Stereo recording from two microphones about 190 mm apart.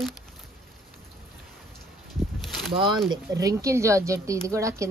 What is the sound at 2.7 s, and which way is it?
A woman's voice, 25° right (ahead or behind).